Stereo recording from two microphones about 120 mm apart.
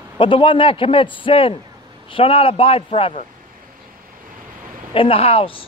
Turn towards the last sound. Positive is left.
turn(degrees=50)  # may be behind; listen again after turning